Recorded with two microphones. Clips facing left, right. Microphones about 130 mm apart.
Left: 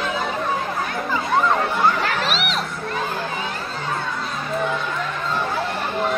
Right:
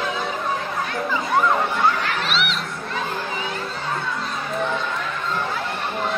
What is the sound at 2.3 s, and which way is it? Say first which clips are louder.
Children shouting: even; 40° left (ahead or behind).